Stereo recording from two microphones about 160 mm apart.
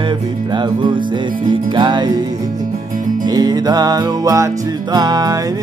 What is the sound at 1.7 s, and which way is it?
Music, 30° right (ahead or behind).